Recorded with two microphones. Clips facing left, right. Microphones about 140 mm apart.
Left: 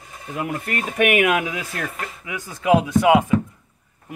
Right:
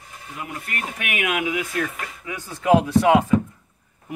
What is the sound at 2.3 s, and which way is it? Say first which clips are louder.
Speech: even; 10° left (ahead or behind).